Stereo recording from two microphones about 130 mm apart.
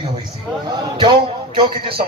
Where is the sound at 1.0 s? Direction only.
40° right (ahead or behind).